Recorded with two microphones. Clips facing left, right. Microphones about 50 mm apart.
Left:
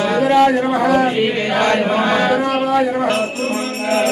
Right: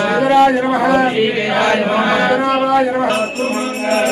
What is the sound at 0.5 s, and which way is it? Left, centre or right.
Speech, centre.